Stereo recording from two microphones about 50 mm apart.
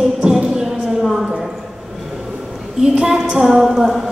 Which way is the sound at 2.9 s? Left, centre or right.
Centre.